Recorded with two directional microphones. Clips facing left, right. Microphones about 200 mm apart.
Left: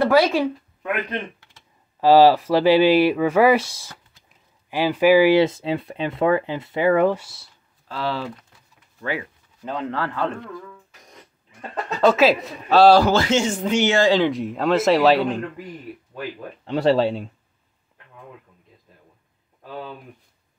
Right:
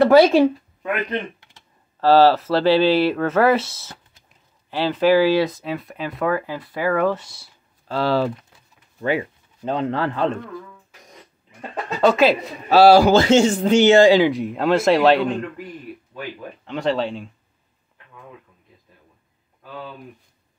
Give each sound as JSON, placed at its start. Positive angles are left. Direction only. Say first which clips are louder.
{"t": 0.0, "sound": "speech", "louder": "right 5 dB", "side_deg": -25}
{"t": 2.0, "sound": "speech", "louder": "left 1 dB", "side_deg": 15}
{"t": 7.2, "sound": "speech", "louder": "even", "side_deg": 5}
{"t": 7.9, "sound": "speech", "louder": "right 7 dB", "side_deg": -35}
{"t": 9.0, "sound": "speech", "louder": "right 6 dB", "side_deg": -25}
{"t": 12.0, "sound": "speech", "louder": "even", "side_deg": 0}
{"t": 13.2, "sound": "speech", "louder": "right 5 dB", "side_deg": -30}
{"t": 14.0, "sound": "speech", "louder": "right 4 dB", "side_deg": -5}
{"t": 16.6, "sound": "speech", "louder": "left 4 dB", "side_deg": 35}